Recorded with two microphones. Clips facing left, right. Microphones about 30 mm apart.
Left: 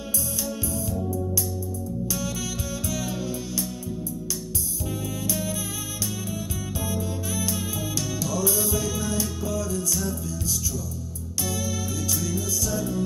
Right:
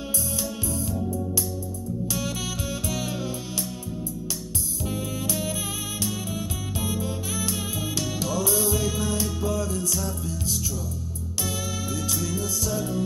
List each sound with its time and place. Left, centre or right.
4.8 s music: centre
8.7 s music: centre
12.6 s music: centre